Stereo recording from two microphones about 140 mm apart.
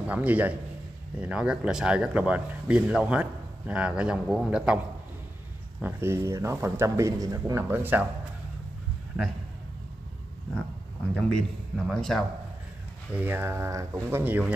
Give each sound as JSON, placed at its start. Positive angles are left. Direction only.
{"t": 0.1, "sound": "speech", "side_deg": -10}
{"t": 5.8, "sound": "speech", "side_deg": -15}
{"t": 11.1, "sound": "a man's voice", "side_deg": 5}
{"t": 13.1, "sound": "speech", "side_deg": -15}